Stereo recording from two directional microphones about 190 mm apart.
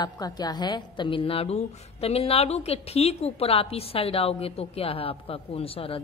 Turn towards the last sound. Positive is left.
turn(degrees=30)  # may be behind; listen again after turning